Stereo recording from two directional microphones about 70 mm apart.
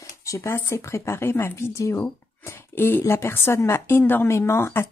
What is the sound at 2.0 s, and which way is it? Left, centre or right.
A woman's voice, left.